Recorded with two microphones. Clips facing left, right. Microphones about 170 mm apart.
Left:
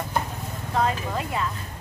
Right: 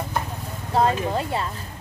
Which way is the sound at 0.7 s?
30° right (ahead or behind).